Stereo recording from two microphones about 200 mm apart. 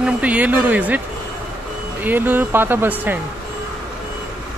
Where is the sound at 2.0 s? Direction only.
10° right (ahead or behind).